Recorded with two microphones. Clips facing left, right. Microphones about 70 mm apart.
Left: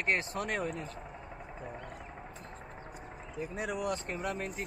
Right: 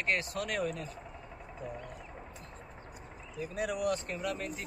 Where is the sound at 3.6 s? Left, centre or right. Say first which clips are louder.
Right 3 dB; left.